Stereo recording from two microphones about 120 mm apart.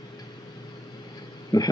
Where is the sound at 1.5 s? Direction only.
35° left (ahead or behind).